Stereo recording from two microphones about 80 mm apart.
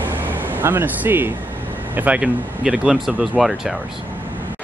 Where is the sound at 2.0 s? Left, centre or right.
Centre.